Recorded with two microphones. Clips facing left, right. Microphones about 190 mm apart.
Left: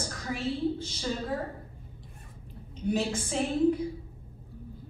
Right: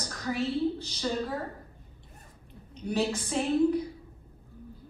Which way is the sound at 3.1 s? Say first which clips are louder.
Even; 35° right (ahead or behind).